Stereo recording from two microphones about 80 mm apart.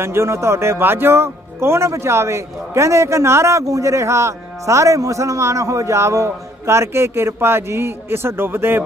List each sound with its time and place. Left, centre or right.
0.0 s speech: right